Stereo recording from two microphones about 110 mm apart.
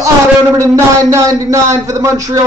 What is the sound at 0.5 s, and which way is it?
A man's voice, 30° right (ahead or behind).